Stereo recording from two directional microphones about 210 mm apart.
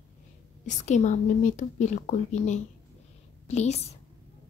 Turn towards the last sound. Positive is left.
turn(degrees=30)  # may be behind; listen again after turning